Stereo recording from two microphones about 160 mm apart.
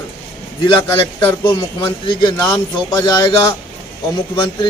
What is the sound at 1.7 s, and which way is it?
Speech, 25° left (ahead or behind).